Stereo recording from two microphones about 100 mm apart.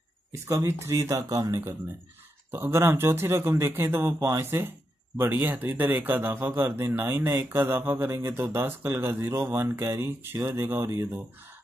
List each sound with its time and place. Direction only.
0.5 s speech: 30° right (ahead or behind)